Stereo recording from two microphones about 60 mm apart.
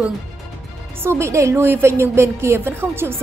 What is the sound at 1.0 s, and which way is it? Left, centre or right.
A woman's voice, right.